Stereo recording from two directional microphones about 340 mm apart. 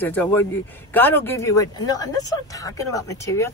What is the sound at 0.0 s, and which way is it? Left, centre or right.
A man's voice, centre.